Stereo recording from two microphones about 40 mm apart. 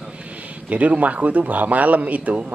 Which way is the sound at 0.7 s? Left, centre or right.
Right.